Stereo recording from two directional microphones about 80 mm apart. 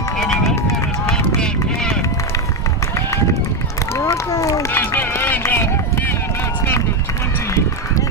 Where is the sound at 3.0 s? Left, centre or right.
Left.